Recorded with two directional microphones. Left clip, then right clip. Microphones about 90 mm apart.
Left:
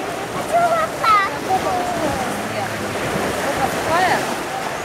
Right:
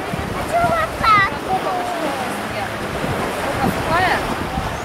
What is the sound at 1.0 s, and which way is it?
Waves, centre (ahead or behind).